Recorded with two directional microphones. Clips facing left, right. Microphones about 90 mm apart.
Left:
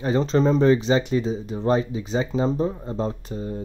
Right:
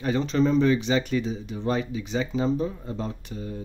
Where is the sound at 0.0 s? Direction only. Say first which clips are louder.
Left 3 dB; 35° left (ahead or behind).